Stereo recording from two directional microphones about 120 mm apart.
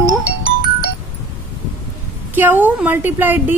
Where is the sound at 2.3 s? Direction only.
15° right (ahead or behind).